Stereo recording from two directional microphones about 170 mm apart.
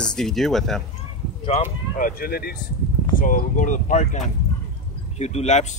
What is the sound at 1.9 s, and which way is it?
Speech, 60° left (ahead or behind).